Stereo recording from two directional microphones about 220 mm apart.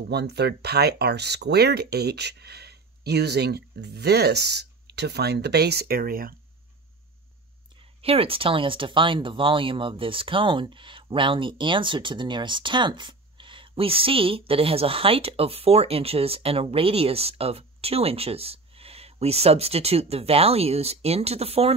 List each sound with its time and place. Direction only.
0.1 s speech: 50° right (ahead or behind)
8.0 s speech: 25° right (ahead or behind)